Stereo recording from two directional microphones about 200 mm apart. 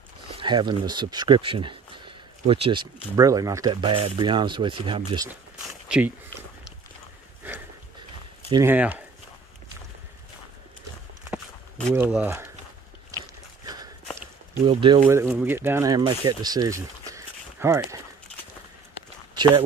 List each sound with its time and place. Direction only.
0.3 s speech: 25° right (ahead or behind)
5.3 s a sound: 5° right (ahead or behind)
8.5 s speech: 15° right (ahead or behind)
11.2 s a sound: 5° right (ahead or behind)
14.7 s speech: 25° right (ahead or behind)
15.0 s speech: 10° right (ahead or behind)